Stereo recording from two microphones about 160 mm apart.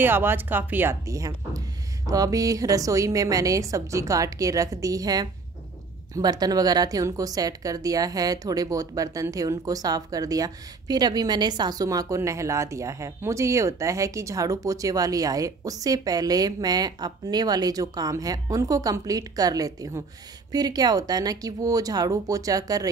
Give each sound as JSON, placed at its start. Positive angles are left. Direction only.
{"t": 0.0, "sound": "a woman's voice", "side_deg": -15}